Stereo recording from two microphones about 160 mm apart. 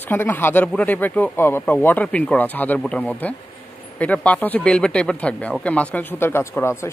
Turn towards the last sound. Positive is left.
turn(degrees=15)  # may be behind; listen again after turning